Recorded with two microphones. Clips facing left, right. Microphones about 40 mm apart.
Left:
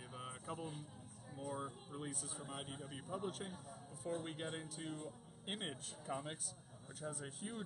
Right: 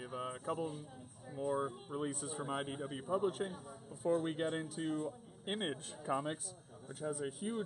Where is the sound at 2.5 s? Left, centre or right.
Right.